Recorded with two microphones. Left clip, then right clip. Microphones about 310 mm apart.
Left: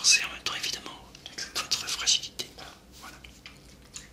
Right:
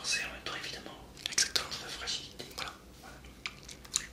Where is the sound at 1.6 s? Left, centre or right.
Left.